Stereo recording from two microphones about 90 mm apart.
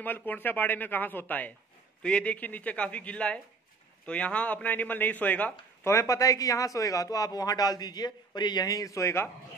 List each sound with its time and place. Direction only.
0.0 s a man's voice: 20° left (ahead or behind)
5.9 s a man's voice: 35° left (ahead or behind)